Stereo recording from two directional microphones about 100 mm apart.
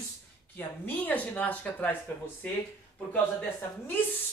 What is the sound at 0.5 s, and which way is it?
Speech, 20° left (ahead or behind).